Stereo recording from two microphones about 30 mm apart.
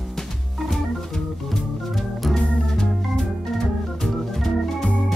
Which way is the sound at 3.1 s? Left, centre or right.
Centre.